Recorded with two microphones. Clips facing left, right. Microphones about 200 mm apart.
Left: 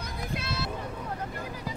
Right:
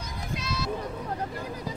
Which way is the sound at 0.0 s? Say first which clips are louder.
Even; 60° left (ahead or behind).